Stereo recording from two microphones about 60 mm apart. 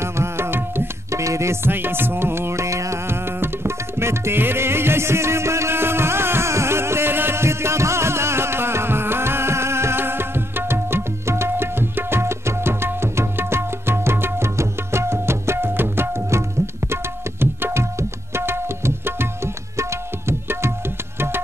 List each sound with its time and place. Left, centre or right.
0.0 s music: right
1.1 s music: right
16.9 s tabla: right